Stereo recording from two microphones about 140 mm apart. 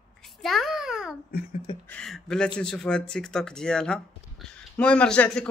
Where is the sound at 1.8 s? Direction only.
5° left (ahead or behind).